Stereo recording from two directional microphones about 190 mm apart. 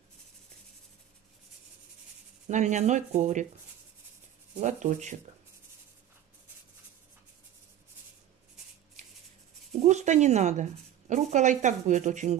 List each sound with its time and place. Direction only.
2.4 s speech: 40° right (ahead or behind)
4.6 s speech: 35° right (ahead or behind)
9.8 s a woman's voice: 40° right (ahead or behind)